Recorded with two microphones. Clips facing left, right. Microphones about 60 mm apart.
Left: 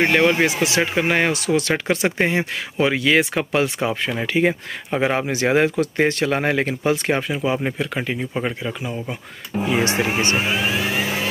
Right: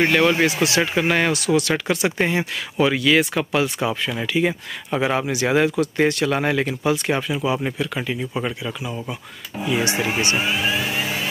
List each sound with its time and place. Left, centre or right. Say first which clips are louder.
0.0 s speech: even; centre; by 4.6 s left
4.9 s speech: left 1 dB; left
5.3 s speech: left 1 dB; left